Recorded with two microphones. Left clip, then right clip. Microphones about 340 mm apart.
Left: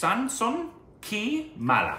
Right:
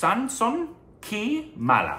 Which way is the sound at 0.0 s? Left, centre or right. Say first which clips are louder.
Right 3 dB; centre.